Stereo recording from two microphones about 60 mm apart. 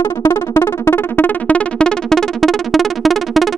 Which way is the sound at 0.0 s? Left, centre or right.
Left.